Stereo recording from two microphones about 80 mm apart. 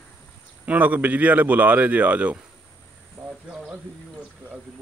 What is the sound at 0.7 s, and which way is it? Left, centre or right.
Speech, right.